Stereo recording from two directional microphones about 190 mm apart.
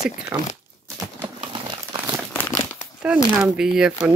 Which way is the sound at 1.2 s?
25° right (ahead or behind).